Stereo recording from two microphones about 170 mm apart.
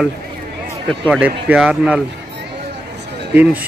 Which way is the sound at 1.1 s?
5° right (ahead or behind).